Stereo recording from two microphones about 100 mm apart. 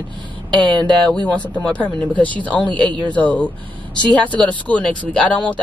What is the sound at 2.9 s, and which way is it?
Speech, 50° right (ahead or behind).